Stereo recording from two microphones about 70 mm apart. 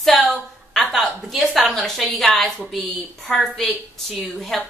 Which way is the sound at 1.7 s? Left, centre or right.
Centre.